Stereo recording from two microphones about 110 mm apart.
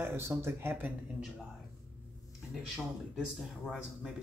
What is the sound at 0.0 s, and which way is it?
Speech, 25° right (ahead or behind).